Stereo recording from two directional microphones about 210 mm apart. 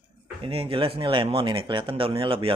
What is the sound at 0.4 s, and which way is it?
Speech, 25° right (ahead or behind).